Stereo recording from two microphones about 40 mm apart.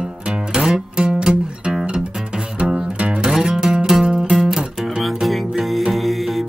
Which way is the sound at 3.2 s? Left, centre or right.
Centre.